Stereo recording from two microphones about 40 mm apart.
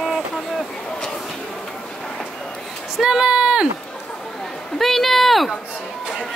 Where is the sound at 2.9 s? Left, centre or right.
Centre.